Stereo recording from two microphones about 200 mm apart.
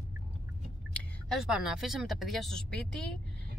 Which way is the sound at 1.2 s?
Centre (ahead or behind).